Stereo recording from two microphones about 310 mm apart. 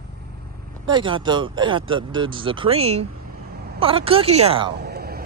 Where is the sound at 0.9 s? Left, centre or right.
Centre.